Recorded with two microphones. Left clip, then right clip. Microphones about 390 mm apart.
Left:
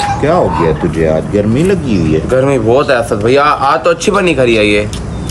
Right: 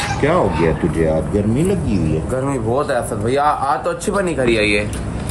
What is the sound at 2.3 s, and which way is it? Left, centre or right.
A man's voice, left.